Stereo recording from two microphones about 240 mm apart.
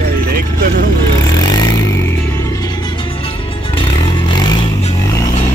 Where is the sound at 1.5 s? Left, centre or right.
Centre.